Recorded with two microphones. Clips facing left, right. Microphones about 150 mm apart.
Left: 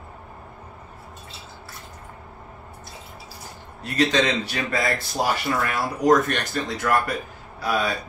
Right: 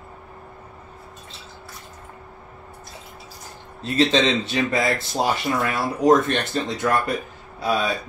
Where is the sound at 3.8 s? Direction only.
25° right (ahead or behind).